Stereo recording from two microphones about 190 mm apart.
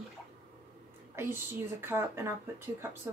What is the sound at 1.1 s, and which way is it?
Speech, 10° right (ahead or behind).